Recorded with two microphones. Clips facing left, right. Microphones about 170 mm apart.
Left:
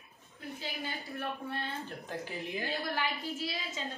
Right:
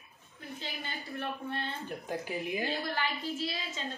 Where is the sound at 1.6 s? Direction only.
15° right (ahead or behind).